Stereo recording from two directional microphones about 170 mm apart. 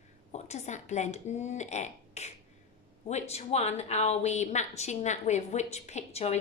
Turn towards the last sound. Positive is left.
turn(degrees=40)  # may be behind; listen again after turning